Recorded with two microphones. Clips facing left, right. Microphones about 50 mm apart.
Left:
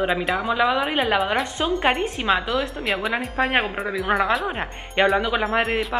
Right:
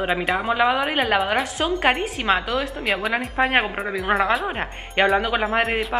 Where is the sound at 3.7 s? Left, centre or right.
Centre.